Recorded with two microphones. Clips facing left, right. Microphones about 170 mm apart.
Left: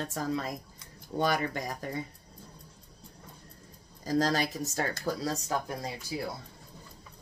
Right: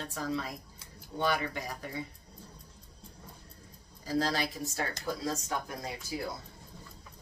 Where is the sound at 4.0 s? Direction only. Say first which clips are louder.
Left 3 dB; 45° left (ahead or behind).